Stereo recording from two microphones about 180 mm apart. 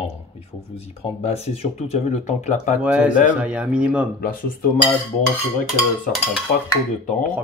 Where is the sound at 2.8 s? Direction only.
5° right (ahead or behind).